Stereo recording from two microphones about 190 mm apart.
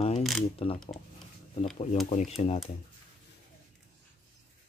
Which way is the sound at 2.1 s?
35° left (ahead or behind).